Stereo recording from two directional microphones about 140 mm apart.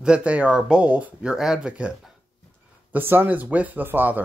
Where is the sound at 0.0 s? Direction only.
10° right (ahead or behind).